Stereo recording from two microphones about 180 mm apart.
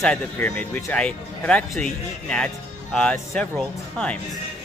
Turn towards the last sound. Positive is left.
turn(degrees=5)  # may be behind; listen again after turning